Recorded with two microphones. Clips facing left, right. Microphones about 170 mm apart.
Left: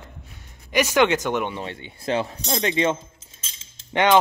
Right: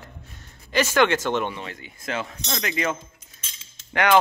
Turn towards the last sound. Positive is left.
turn(degrees=25)  # may be behind; listen again after turning